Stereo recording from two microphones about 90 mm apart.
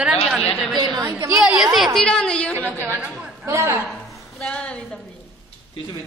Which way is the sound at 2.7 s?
25° right (ahead or behind).